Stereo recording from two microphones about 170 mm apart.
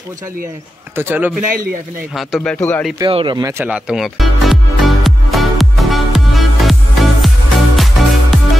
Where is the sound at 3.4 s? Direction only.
20° right (ahead or behind).